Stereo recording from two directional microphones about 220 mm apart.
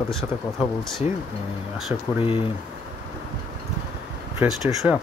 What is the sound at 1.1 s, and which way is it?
Speech, 30° left (ahead or behind).